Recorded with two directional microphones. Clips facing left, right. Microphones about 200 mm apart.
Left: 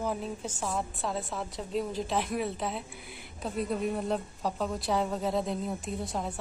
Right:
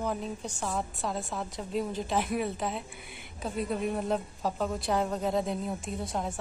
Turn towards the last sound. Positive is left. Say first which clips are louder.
# even
turn(degrees=0)  # may be behind; listen again after turning